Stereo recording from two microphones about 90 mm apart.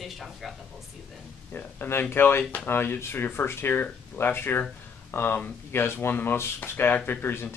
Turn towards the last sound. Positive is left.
turn(degrees=25)  # may be behind; listen again after turning